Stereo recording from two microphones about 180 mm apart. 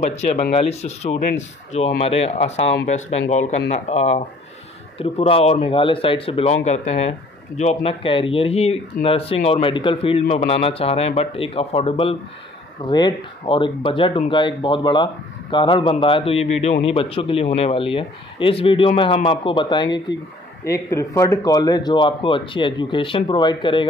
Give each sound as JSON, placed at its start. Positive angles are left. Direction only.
{"t": 0.0, "sound": "speech", "side_deg": 35}